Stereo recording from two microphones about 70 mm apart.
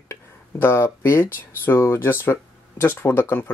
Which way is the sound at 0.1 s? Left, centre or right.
Left.